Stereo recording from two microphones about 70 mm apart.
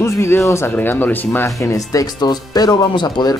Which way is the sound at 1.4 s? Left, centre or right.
Left.